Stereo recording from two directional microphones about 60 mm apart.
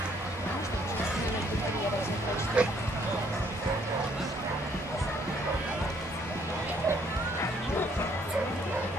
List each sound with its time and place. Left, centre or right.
2.6 s speech: right